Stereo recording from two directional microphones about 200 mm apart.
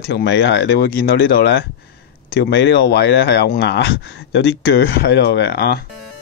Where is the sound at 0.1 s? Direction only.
60° left (ahead or behind).